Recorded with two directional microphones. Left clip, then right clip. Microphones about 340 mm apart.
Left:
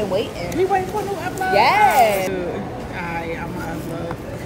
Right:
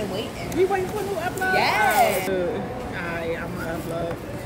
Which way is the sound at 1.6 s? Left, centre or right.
Centre.